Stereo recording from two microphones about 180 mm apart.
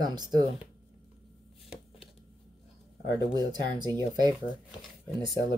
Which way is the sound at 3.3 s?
20° right (ahead or behind).